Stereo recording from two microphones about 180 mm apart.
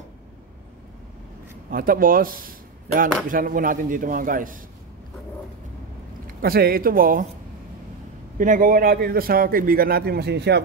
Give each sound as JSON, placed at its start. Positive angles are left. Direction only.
{"t": 1.7, "sound": "speech", "side_deg": -50}
{"t": 6.2, "sound": "speech", "side_deg": -55}
{"t": 8.4, "sound": "a man's voice", "side_deg": -50}